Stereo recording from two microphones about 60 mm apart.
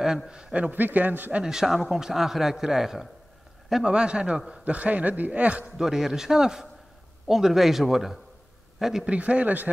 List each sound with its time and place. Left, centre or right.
0.3 s a man's voice: centre
1.4 s a man's voice: centre
3.9 s a man's voice: centre
5.8 s a man's voice: centre
9.1 s a man's voice: right